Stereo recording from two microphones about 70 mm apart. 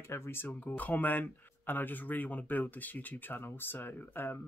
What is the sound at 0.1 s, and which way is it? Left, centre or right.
Speech, left.